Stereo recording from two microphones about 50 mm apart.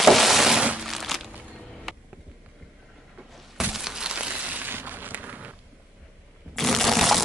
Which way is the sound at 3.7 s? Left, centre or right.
Centre.